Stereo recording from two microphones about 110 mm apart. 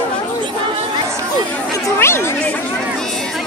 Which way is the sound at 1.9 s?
25° left (ahead or behind).